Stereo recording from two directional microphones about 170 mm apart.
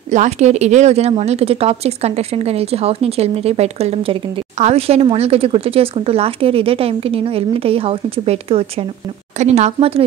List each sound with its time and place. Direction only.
0.1 s speech: 45° right (ahead or behind)